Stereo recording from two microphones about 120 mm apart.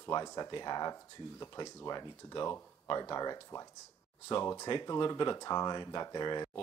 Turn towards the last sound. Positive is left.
turn(degrees=35)  # may be behind; listen again after turning